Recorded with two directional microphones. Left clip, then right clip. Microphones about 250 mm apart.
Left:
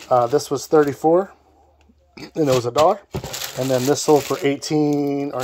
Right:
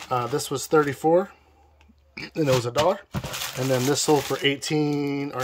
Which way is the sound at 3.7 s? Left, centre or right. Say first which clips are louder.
Left 5 dB; centre.